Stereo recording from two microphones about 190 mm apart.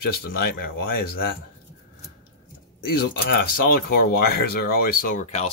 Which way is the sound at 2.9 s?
55° left (ahead or behind).